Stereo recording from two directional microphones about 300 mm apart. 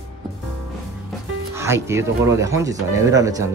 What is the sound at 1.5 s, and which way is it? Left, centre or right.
Speech, centre.